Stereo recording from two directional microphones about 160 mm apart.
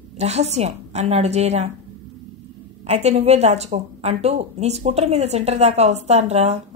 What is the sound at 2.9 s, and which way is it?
A woman's voice, 45° right (ahead or behind).